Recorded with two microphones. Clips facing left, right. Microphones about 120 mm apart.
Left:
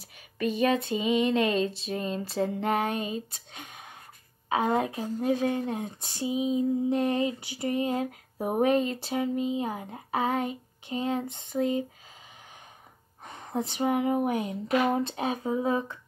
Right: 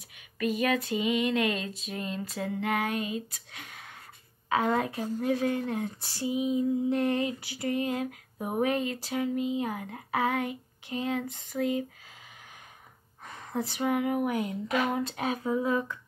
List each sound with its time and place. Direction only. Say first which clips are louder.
0.4 s a woman's voice: left 2 dB; 30° left (ahead or behind)
13.2 s a woman's voice: left 1 dB; 20° left (ahead or behind)